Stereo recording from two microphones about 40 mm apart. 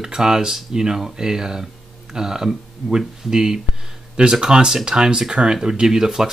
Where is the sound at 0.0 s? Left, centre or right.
Centre.